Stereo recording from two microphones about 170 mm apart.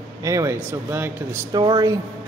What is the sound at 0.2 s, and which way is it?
Speech, 20° right (ahead or behind).